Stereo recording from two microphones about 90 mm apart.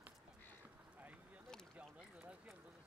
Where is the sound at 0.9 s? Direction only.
15° right (ahead or behind).